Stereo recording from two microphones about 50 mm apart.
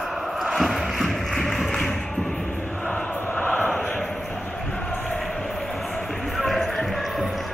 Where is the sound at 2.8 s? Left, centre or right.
Left.